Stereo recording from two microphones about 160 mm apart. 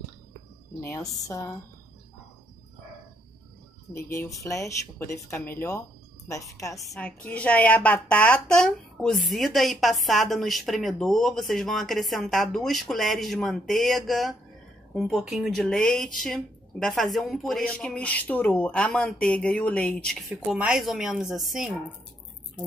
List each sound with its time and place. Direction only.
0.7 s speech: 15° left (ahead or behind)
3.9 s speech: 15° left (ahead or behind)
6.8 s a woman's voice: 5° left (ahead or behind)